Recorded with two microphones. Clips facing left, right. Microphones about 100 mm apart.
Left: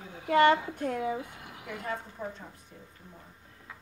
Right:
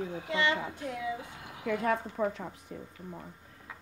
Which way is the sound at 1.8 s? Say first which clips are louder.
Right 6 dB; 90° right.